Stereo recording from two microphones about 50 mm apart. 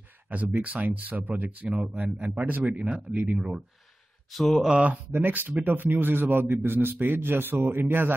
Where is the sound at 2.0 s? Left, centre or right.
Right.